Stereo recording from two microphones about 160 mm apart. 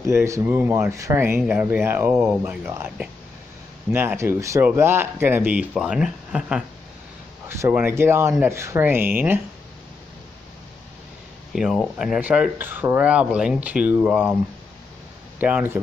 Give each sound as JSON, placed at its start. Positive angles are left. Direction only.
{"t": 0.0, "sound": "speech", "side_deg": -15}
{"t": 11.5, "sound": "speech", "side_deg": 0}
{"t": 15.4, "sound": "speech", "side_deg": -10}